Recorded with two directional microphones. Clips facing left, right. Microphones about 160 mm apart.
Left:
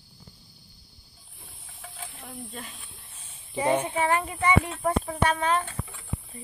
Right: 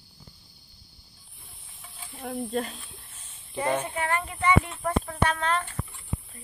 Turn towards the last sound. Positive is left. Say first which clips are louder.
# left 2 dB
turn(degrees=10)  # may be behind; listen again after turning